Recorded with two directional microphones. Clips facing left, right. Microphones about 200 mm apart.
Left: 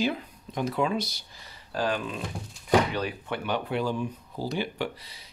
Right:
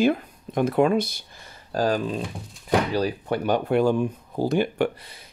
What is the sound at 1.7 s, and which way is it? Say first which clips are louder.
Speech: right 6 dB; 40° right (ahead or behind).